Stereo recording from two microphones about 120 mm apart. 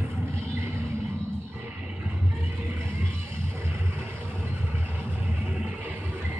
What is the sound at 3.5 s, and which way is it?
Vehicle, 20° right (ahead or behind).